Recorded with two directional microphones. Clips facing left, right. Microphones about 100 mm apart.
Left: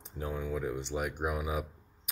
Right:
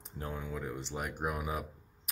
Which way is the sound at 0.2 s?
5° left (ahead or behind).